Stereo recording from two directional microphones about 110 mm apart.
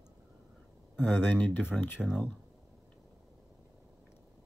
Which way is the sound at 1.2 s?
20° left (ahead or behind).